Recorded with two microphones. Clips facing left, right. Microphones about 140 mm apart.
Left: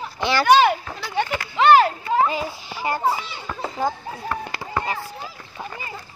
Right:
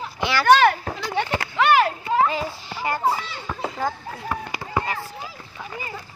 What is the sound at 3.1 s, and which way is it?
Speech, 10° left (ahead or behind).